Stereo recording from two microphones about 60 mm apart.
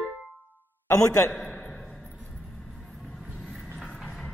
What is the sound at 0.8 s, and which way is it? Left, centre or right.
Speech, left.